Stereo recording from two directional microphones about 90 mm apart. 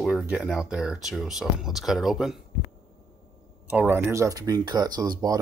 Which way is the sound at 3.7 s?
20° right (ahead or behind).